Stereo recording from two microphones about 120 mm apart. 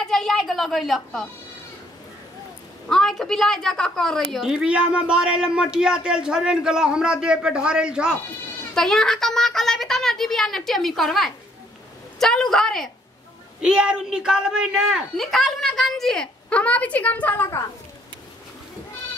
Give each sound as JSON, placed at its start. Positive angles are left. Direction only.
{"t": 0.0, "sound": "speech", "side_deg": 5}
{"t": 2.9, "sound": "speech", "side_deg": 5}
{"t": 8.7, "sound": "speech", "side_deg": 5}